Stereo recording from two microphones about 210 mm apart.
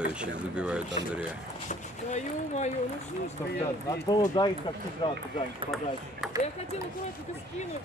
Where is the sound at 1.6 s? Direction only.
35° left (ahead or behind).